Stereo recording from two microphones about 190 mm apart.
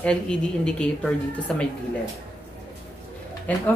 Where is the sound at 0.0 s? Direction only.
5° left (ahead or behind).